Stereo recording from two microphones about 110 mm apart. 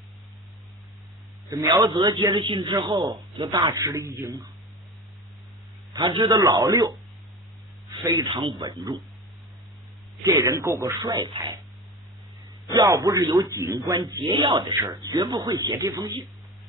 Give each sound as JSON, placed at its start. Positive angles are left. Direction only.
{"t": 1.5, "sound": "speech", "side_deg": -30}
{"t": 2.0, "sound": "speech", "side_deg": -50}
{"t": 3.1, "sound": "speech", "side_deg": -30}
{"t": 5.9, "sound": "speech", "side_deg": -45}
{"t": 6.4, "sound": "speech", "side_deg": -30}
{"t": 8.0, "sound": "speech", "side_deg": -35}
{"t": 10.2, "sound": "speech", "side_deg": -30}
{"t": 12.9, "sound": "speech", "side_deg": -30}
{"t": 14.0, "sound": "speech", "side_deg": -40}
{"t": 15.0, "sound": "speech", "side_deg": -35}